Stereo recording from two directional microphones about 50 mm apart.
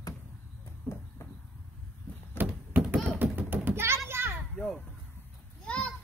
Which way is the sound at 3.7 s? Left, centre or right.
Right.